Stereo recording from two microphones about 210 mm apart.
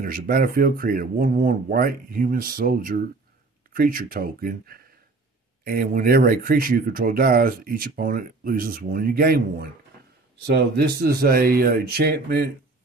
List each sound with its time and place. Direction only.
0.0 s speech: 45° right (ahead or behind)